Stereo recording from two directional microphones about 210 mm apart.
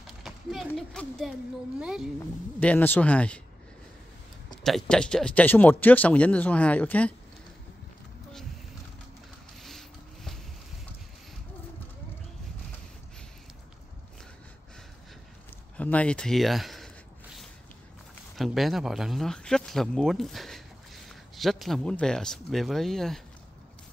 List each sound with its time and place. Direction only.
0.0 s a woman's voice: centre (ahead or behind)
2.6 s speech: 10° left (ahead or behind)
4.6 s speech: centre (ahead or behind)
9.6 s a sound: centre (ahead or behind)
15.8 s speech: 5° left (ahead or behind)
18.3 s speech: centre (ahead or behind)